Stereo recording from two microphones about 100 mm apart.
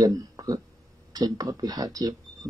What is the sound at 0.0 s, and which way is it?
Speech, 40° right (ahead or behind).